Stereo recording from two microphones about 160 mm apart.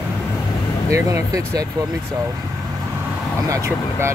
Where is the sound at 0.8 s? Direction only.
20° right (ahead or behind).